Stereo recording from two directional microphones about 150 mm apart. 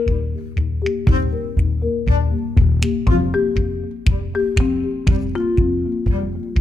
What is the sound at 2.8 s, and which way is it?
Music, centre (ahead or behind).